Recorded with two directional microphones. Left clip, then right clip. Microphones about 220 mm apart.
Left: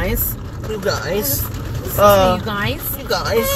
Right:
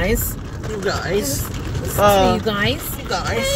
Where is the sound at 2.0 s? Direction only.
15° left (ahead or behind).